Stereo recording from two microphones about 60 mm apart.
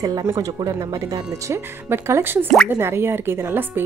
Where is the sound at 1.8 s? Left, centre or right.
Right.